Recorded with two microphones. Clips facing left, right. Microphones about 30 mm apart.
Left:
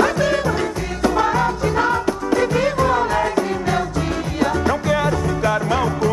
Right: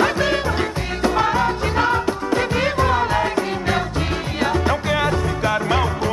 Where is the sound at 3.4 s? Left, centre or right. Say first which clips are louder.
Left 1 dB; right.